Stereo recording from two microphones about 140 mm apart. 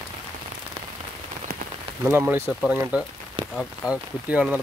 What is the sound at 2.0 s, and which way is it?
Speech, 15° right (ahead or behind).